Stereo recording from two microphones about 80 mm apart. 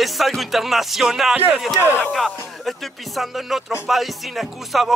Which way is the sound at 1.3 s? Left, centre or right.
Centre.